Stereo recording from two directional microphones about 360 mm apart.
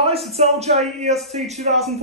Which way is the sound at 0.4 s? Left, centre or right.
Centre.